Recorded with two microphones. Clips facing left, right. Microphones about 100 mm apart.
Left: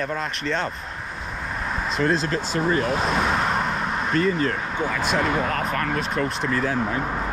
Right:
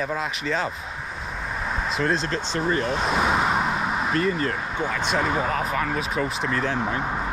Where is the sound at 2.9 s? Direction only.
Centre (ahead or behind).